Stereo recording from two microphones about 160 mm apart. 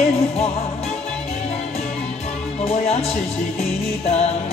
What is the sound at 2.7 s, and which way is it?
Music, 40° left (ahead or behind).